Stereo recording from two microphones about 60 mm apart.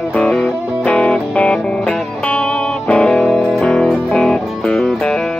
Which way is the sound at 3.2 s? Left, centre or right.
Centre.